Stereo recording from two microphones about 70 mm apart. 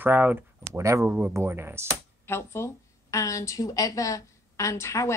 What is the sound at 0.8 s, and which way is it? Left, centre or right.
Speech, right.